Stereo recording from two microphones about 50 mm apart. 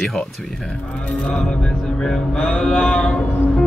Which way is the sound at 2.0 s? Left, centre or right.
Centre.